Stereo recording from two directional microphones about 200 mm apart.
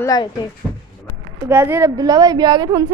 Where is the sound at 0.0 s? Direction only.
20° left (ahead or behind).